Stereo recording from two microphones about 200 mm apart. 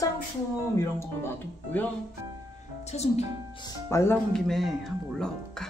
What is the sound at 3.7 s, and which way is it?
Speech, 15° left (ahead or behind).